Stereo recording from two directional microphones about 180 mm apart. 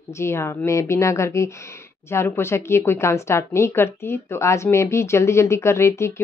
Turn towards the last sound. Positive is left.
turn(degrees=15)  # may be behind; listen again after turning